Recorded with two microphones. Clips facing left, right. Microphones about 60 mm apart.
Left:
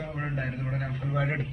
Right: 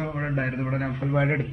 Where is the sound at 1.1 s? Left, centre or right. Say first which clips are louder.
Right 5 dB; right.